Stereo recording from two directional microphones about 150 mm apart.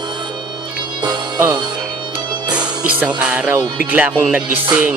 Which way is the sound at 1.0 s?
20° right (ahead or behind).